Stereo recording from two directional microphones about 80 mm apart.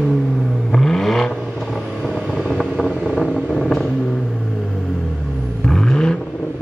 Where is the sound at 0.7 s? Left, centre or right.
Centre.